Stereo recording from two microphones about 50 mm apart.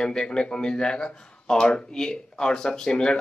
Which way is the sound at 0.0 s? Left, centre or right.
Centre.